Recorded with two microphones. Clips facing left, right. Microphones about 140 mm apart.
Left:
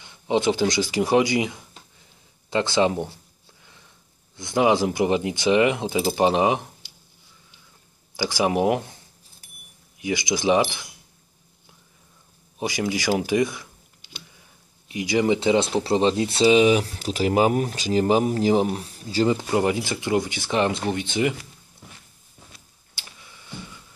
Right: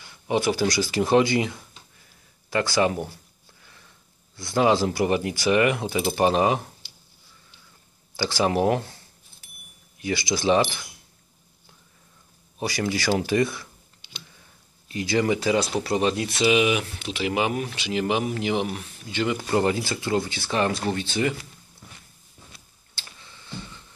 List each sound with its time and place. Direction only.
0.0 s speech: 20° left (ahead or behind)
4.4 s speech: 15° left (ahead or behind)
8.2 s speech: 15° left (ahead or behind)
12.5 s speech: 15° left (ahead or behind)
14.9 s speech: 15° left (ahead or behind); by 19.3 s 35° left (ahead or behind)
19.3 s speech: 15° left (ahead or behind)
22.9 s tick-tock: 15° left (ahead or behind)